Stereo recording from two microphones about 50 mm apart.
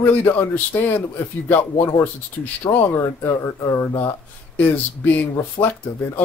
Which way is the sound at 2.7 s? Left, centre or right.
Left.